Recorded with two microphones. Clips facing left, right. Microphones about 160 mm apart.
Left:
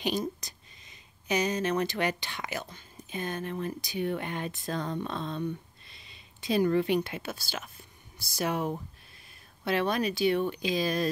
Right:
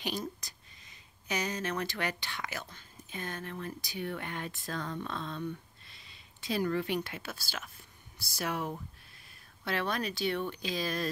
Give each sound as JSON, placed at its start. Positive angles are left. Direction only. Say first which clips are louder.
{"t": 0.0, "sound": "speech", "louder": "left 6 dB", "side_deg": 20}